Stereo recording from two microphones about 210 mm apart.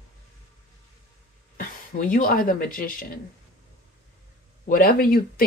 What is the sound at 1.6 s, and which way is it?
Speech, 40° left (ahead or behind).